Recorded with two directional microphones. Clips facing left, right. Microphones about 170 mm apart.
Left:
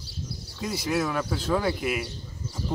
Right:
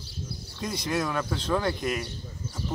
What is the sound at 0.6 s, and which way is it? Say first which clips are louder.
Speech: left 2 dB; 5° left (ahead or behind).